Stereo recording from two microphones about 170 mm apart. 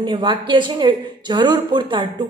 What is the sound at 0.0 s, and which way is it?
Speech, 30° right (ahead or behind).